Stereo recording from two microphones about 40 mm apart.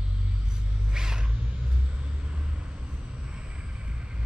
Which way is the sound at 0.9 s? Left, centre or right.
Centre.